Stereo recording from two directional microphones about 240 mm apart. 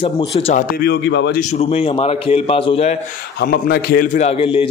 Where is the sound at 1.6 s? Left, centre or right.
Left.